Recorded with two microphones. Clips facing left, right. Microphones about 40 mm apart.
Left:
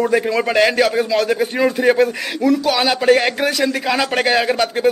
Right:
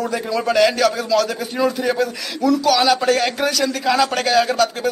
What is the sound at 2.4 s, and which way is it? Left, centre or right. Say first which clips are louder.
A man's voice: even; centre.